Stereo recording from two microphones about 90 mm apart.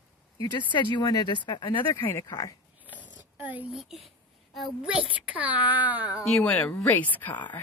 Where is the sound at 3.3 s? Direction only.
20° right (ahead or behind).